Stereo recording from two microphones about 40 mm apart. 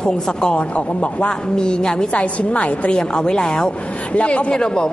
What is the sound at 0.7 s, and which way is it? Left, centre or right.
Speech, left.